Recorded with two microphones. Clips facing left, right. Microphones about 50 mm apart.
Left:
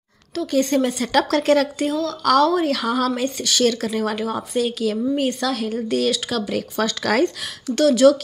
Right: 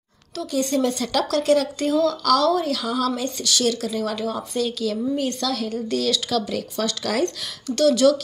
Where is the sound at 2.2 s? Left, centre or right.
Left.